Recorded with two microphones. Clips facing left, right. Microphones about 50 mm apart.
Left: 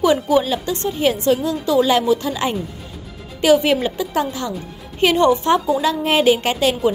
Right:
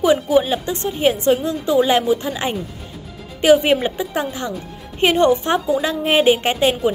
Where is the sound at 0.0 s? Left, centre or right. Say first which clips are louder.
Even; centre.